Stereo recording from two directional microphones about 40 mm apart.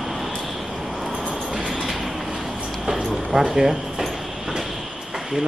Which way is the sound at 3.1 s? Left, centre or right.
Centre.